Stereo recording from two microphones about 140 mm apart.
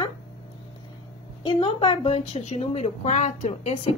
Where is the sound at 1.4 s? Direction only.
40° left (ahead or behind).